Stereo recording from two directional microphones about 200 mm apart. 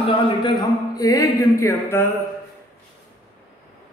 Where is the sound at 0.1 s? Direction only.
25° left (ahead or behind).